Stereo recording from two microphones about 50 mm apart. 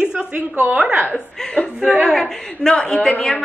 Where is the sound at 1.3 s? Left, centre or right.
Centre.